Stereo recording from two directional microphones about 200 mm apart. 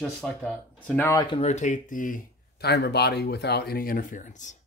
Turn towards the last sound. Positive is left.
turn(degrees=40)  # may be behind; listen again after turning